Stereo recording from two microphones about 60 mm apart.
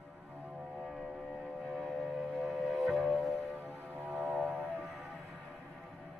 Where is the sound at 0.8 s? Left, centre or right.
Centre.